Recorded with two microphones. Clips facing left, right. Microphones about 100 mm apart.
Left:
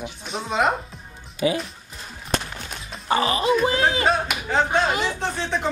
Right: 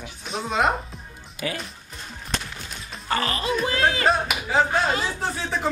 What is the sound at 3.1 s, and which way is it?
Speech, 20° left (ahead or behind).